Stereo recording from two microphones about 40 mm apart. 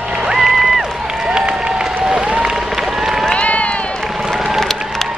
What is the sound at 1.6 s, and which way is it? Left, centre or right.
Applause, right.